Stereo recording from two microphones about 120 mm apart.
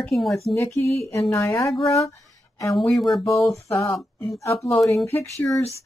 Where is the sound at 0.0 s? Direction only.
Centre (ahead or behind).